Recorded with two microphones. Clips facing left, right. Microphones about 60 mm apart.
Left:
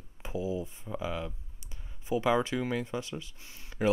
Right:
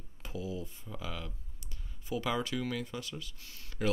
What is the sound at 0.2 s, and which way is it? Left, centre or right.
Speech, left.